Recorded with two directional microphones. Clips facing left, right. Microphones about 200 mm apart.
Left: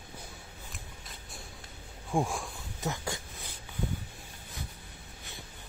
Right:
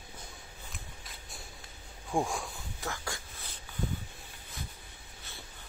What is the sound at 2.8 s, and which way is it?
Speech, 20° left (ahead or behind).